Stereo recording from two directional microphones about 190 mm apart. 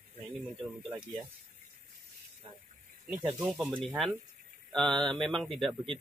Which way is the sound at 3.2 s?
10° right (ahead or behind).